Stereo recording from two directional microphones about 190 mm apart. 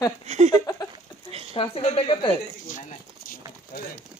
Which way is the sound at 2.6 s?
45° left (ahead or behind).